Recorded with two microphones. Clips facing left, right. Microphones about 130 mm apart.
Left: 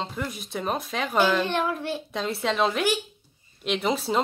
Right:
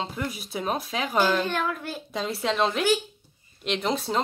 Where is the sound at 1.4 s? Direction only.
25° left (ahead or behind).